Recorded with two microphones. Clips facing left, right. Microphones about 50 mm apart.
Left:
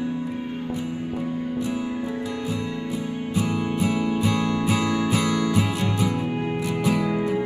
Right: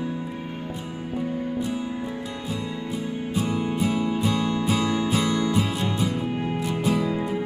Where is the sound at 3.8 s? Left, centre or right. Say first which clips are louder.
Left 1 dB; left.